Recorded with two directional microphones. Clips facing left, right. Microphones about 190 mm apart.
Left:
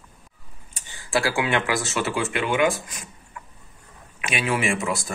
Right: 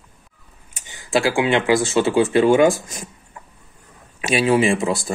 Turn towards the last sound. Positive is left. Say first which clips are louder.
# right 7 dB
turn(degrees=-30)  # may be behind; listen again after turning